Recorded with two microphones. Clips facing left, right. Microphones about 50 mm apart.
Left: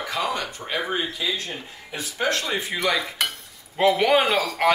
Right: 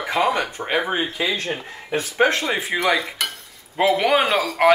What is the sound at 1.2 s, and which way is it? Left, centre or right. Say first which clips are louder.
Speech: right 5 dB; right.